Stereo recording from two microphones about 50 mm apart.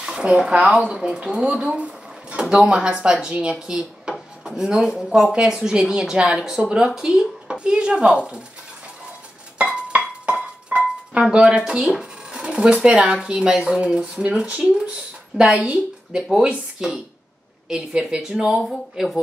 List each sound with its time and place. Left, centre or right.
0.2 s speech: right
9.6 s music: right
11.2 s a woman's voice: centre
16.2 s speech: centre